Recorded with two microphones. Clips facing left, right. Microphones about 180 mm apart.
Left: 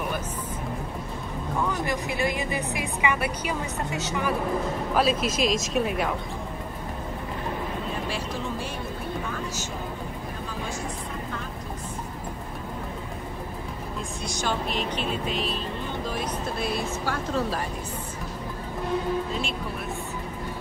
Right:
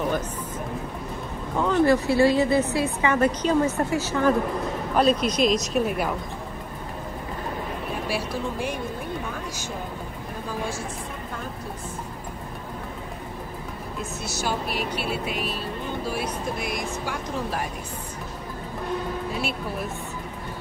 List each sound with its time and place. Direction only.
1.9 s a woman's voice: 15° left (ahead or behind)
4.9 s speech: 5° left (ahead or behind)
8.1 s music: 10° right (ahead or behind)
14.2 s speech: 5° right (ahead or behind)
19.3 s speech: 10° right (ahead or behind)